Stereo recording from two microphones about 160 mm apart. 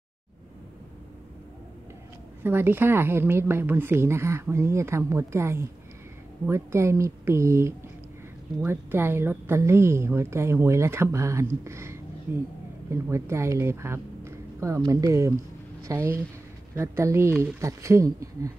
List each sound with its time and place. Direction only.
2.4 s a woman's voice: 15° right (ahead or behind)